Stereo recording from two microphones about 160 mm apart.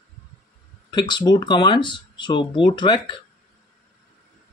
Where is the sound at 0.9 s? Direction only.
25° left (ahead or behind).